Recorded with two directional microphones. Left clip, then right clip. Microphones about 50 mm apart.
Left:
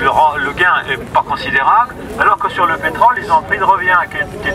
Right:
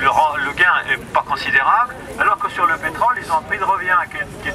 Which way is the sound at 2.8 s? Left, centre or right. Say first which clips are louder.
Left 6 dB; right.